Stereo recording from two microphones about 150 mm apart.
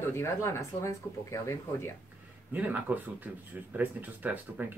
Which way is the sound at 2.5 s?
10° right (ahead or behind).